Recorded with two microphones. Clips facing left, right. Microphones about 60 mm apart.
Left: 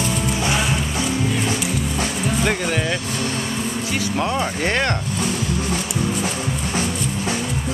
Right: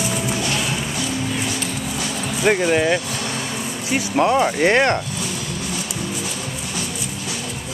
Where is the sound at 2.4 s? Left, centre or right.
Centre.